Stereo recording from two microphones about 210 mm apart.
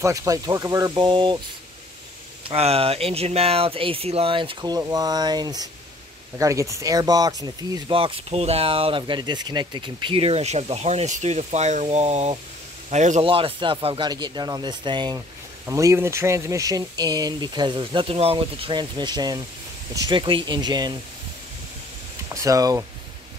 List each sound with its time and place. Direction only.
0.0 s speech: 15° right (ahead or behind)
2.4 s speech: 30° right (ahead or behind)
22.3 s speech: 15° right (ahead or behind)